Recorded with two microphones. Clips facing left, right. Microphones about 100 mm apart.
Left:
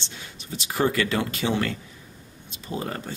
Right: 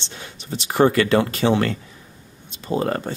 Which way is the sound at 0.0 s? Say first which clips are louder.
Right 4 dB; 65° right (ahead or behind).